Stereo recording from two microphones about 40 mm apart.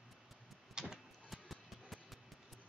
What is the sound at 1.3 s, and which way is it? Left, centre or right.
Music, centre.